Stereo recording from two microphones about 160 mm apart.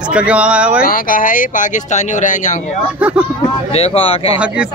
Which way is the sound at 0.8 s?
60° left (ahead or behind).